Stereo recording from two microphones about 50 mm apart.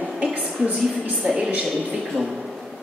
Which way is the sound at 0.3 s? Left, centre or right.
Right.